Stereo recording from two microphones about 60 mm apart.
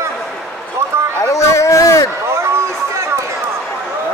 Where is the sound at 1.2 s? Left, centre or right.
Left.